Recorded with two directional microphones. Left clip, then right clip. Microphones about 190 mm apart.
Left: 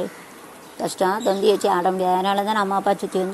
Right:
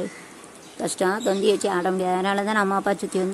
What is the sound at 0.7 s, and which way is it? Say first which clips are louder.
A woman's voice: left 2 dB; 10° right (ahead or behind).